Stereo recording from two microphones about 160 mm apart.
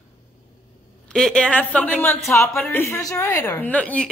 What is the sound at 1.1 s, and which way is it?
A woman's voice, 5° left (ahead or behind).